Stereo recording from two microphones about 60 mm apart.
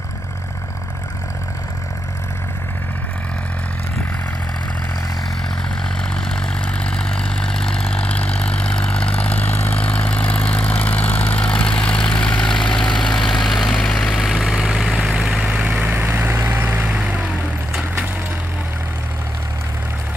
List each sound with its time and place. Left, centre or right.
6.1 s vehicle: centre
12.4 s vehicle: centre
14.2 s vehicle: centre; by 16.1 s right
16.1 s vehicle: right
16.8 s vehicle: centre